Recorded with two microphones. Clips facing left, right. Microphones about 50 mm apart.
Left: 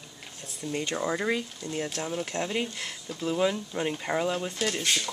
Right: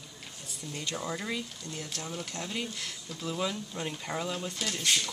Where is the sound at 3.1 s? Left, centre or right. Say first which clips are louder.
Left 7 dB; centre.